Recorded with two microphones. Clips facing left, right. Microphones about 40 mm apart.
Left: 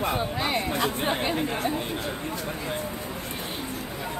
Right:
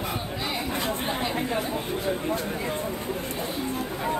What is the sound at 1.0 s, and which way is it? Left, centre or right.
Chatter, left.